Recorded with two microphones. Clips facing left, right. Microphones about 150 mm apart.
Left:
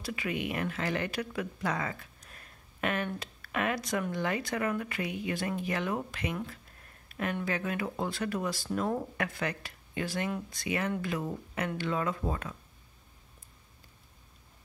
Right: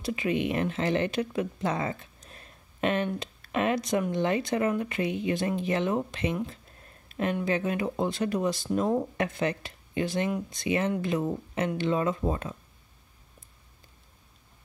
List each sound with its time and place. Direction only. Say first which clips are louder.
0.0 s speech: right 6 dB; 25° right (ahead or behind)